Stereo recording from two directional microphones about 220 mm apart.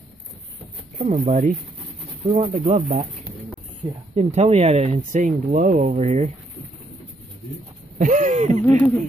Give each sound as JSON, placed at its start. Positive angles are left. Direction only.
{"t": 0.9, "sound": "speech", "side_deg": -30}
{"t": 4.1, "sound": "speech", "side_deg": -30}
{"t": 8.0, "sound": "speech", "side_deg": -35}
{"t": 8.6, "sound": "speech", "side_deg": 5}